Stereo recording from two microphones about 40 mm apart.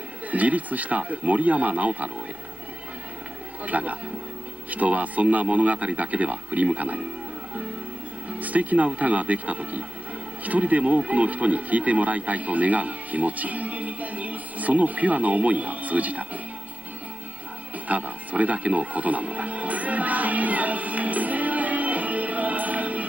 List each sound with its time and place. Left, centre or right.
0.3 s speech: right
3.6 s speech: right
8.3 s speech: right
17.8 s music: right